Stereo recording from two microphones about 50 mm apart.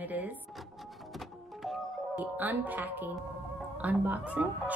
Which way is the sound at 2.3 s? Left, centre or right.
Right.